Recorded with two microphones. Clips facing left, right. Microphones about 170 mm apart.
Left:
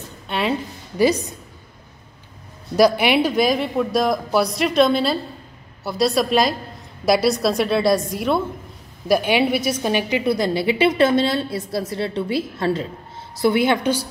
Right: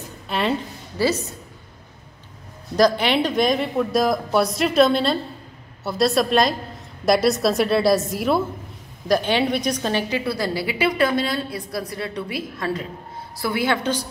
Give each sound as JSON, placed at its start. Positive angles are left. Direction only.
{"t": 0.3, "sound": "a sound", "side_deg": 0}
{"t": 0.9, "sound": "a woman's voice", "side_deg": 15}
{"t": 2.7, "sound": "speech", "side_deg": 10}
{"t": 9.0, "sound": "a woman's voice", "side_deg": 10}